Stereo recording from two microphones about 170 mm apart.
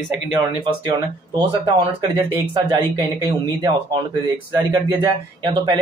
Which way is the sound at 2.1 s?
25° right (ahead or behind).